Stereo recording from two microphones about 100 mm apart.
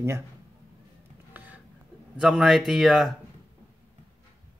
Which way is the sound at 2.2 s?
5° right (ahead or behind).